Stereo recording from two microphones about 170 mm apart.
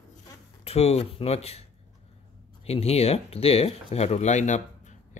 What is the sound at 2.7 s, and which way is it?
Speech, 35° left (ahead or behind).